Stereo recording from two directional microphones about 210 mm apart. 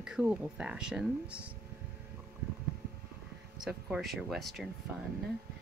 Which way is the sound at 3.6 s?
5° right (ahead or behind).